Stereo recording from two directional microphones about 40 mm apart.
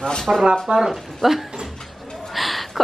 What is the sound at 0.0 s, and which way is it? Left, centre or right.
Speech, centre.